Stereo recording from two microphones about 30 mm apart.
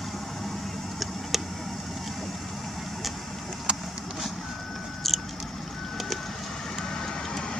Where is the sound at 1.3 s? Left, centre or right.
Centre.